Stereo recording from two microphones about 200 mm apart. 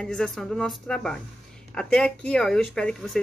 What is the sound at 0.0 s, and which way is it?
Speech, 5° left (ahead or behind).